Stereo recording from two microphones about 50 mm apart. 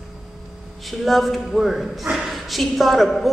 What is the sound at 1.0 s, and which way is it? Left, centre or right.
Speech, centre.